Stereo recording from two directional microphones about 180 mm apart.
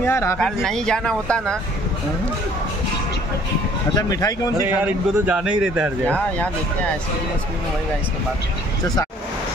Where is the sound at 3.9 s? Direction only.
20° left (ahead or behind).